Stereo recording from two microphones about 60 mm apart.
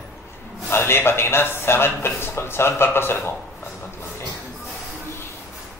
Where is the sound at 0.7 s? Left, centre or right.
Left.